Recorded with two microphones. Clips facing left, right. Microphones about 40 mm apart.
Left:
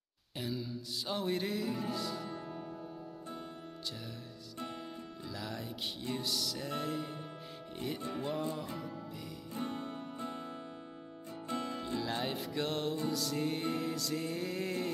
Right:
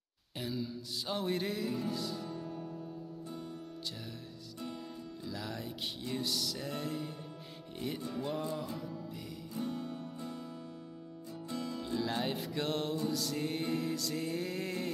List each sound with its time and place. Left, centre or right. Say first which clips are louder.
0.4 s music: right 1 dB; centre
2.4 s music: right 1 dB; left
5.3 s music: even; centre
8.0 s music: even; left
8.3 s music: even; centre
9.5 s music: right 1 dB; left
12.0 s music: right 3 dB; centre